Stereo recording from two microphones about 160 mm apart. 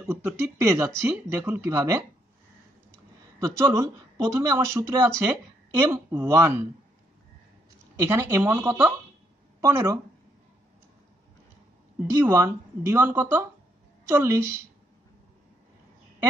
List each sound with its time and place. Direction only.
0.0 s speech: 10° right (ahead or behind)
3.3 s speech: 15° right (ahead or behind)
7.9 s speech: 15° right (ahead or behind)
12.2 s speech: 15° right (ahead or behind)